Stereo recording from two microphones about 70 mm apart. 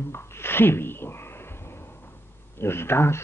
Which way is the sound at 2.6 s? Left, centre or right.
Left.